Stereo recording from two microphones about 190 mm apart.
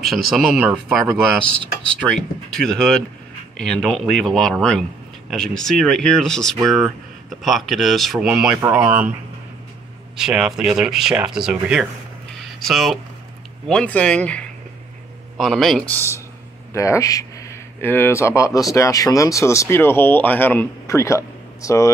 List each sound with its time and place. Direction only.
0.0 s speech: centre (ahead or behind)
1.9 s speech: 5° left (ahead or behind)
8.5 s speech: 15° right (ahead or behind)
10.1 s speech: 5° right (ahead or behind); by 21.9 s 15° left (ahead or behind)